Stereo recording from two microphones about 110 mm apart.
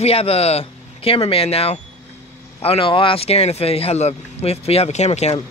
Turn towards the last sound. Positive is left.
turn(degrees=85)